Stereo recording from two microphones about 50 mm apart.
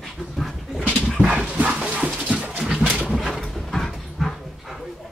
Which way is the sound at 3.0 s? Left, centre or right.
Centre.